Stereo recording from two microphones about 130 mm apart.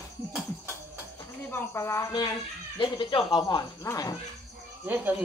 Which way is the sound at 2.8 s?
40° left (ahead or behind).